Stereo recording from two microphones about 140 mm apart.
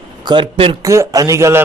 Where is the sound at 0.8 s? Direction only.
20° right (ahead or behind).